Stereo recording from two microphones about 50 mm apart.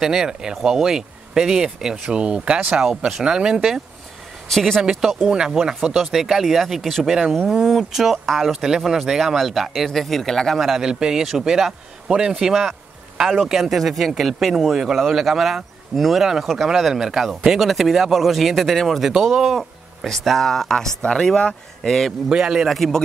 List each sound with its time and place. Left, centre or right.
0.0 s speech: centre
2.8 s speech: centre
4.5 s speech: centre
5.3 s speech: centre
8.5 s speech: centre
10.6 s speech: centre
19.4 s speech: centre
21.8 s speech: centre
22.3 s speech: centre
22.7 s speech: centre